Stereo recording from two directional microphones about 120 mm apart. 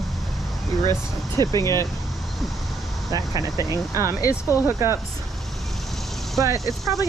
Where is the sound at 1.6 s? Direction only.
25° left (ahead or behind).